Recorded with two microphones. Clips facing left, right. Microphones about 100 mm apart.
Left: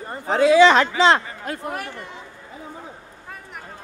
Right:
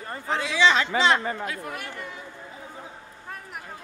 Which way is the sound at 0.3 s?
45° left (ahead or behind).